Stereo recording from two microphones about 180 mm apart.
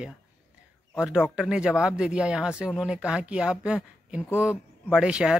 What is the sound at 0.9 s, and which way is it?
Speech, 5° right (ahead or behind).